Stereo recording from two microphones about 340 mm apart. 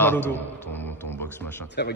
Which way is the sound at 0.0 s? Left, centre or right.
Centre.